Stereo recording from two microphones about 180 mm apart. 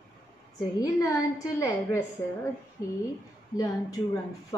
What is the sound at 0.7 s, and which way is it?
A woman's voice, 20° left (ahead or behind).